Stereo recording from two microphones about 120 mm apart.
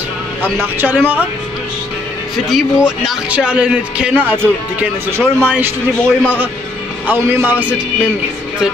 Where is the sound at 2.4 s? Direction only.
5° right (ahead or behind).